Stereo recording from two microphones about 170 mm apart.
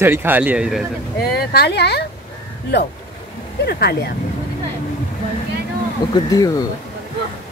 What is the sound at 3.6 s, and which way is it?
Speech, 75° left (ahead or behind).